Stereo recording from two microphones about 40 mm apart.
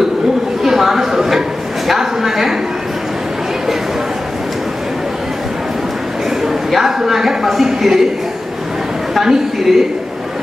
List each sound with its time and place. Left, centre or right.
0.7 s a sound: centre
1.9 s a man's voice: centre
6.4 s a man's voice: centre
9.2 s a woman's voice: centre